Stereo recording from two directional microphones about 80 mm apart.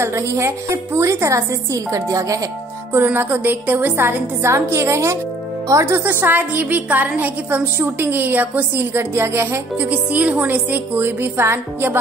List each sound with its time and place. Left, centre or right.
0.0 s a woman's voice: right
2.9 s a woman's voice: right
9.8 s a woman's voice: centre